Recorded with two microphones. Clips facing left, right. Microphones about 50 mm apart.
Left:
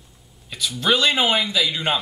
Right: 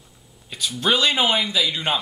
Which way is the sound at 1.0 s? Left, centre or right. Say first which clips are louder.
Left 1 dB; centre.